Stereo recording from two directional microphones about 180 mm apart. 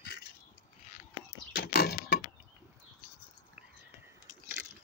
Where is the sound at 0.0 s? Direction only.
60° left (ahead or behind).